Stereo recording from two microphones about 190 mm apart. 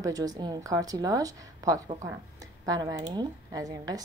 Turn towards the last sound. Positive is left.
turn(degrees=-20)  # may be behind; listen again after turning